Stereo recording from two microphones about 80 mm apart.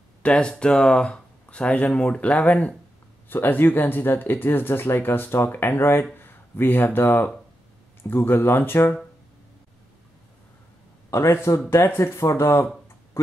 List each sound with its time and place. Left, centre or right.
0.2 s speech: centre
11.1 s a man's voice: left